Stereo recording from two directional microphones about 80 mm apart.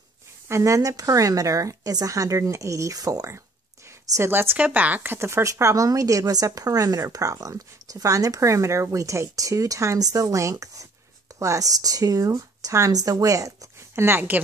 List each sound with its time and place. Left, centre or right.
0.5 s speech: right
4.0 s a sound: right
4.3 s speech: right
14.0 s speech: right